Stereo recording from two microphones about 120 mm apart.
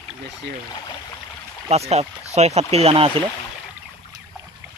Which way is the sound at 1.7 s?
60° right (ahead or behind).